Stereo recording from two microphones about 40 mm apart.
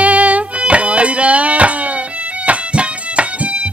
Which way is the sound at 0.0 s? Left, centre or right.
Right.